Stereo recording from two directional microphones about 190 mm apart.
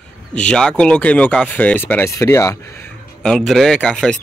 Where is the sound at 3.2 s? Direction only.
Centre (ahead or behind).